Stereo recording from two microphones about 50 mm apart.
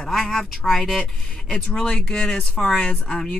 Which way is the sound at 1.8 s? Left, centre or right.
Centre.